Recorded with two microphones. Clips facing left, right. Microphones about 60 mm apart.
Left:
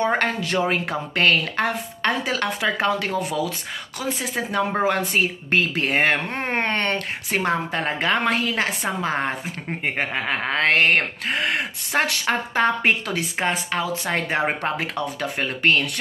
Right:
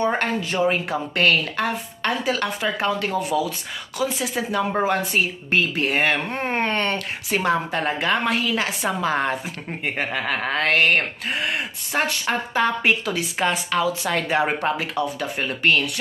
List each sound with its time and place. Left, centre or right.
0.0 s speech: left
1.1 s speech: left
3.3 s speech: right
4.0 s a woman's voice: left